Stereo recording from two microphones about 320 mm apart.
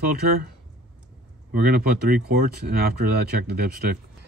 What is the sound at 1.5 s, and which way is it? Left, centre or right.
Speech, right.